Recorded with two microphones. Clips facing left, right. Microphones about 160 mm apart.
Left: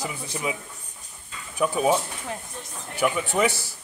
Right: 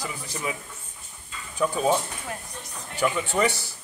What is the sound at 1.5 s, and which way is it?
A man's voice, 10° left (ahead or behind).